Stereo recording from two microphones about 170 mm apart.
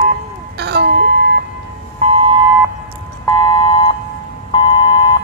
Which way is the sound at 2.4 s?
15° right (ahead or behind).